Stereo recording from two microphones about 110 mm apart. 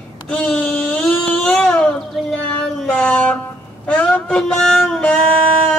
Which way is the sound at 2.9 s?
10° left (ahead or behind).